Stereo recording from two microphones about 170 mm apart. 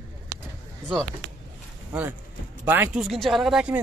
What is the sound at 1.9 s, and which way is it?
Speech, 10° right (ahead or behind).